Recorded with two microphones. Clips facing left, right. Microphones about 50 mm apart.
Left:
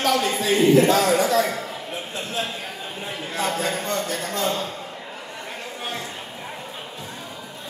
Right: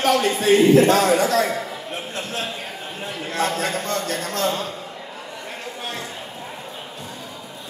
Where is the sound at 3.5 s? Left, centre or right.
Right.